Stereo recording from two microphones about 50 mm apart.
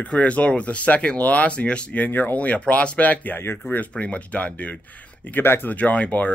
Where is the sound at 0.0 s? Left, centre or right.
Left.